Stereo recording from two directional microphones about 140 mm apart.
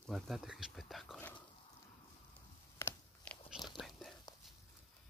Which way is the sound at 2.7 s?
15° left (ahead or behind).